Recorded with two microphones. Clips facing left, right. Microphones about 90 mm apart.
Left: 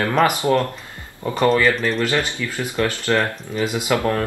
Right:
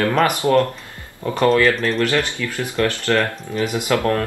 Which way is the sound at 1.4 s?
Centre (ahead or behind).